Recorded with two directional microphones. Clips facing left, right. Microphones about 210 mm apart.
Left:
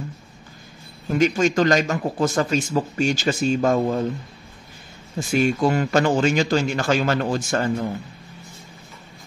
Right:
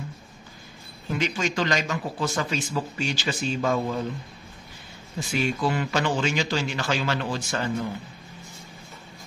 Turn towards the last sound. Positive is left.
turn(degrees=45)  # may be behind; listen again after turning